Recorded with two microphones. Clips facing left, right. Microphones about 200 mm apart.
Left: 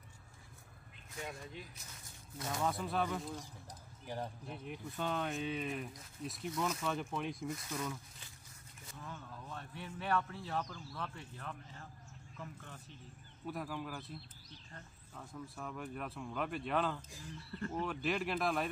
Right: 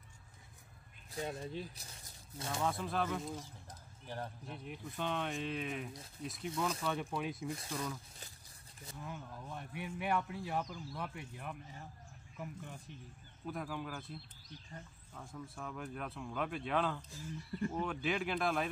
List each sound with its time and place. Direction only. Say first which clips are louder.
1.1 s speech: right 5 dB; 35° right (ahead or behind)
2.6 s speech: even; centre (ahead or behind)
4.0 s speech: left 2 dB; 10° left (ahead or behind)
4.5 s speech: left 1 dB; centre (ahead or behind)
7.4 s speech: even; 30° right (ahead or behind)
9.0 s speech: right 2 dB; 15° right (ahead or behind)
13.5 s speech: even; centre (ahead or behind)
15.1 s speech: even; centre (ahead or behind)
17.5 s speech: right 2 dB; 15° right (ahead or behind)
17.8 s speech: even; centre (ahead or behind)